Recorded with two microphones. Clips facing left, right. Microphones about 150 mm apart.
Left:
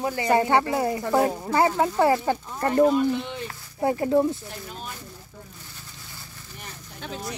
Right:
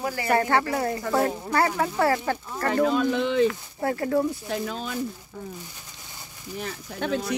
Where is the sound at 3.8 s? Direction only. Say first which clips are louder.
Left 3 dB; 20° left (ahead or behind).